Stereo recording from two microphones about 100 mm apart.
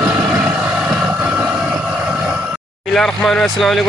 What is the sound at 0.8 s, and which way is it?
Vehicle, 15° right (ahead or behind).